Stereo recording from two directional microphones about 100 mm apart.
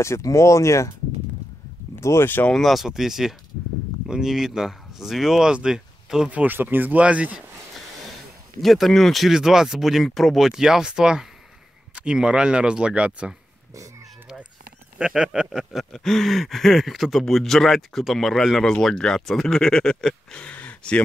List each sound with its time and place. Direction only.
0.0 s speech: 30° left (ahead or behind)
2.0 s speech: 25° left (ahead or behind)
2.5 s speech: centre (ahead or behind)
8.5 s speech: centre (ahead or behind)
15.0 s speech: 10° right (ahead or behind); by 21.0 s 10° left (ahead or behind)